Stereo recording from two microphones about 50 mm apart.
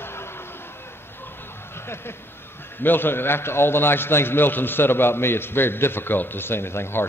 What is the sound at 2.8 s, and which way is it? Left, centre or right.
A man's voice, left.